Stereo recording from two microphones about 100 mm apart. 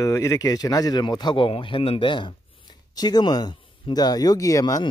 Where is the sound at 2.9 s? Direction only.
40° left (ahead or behind).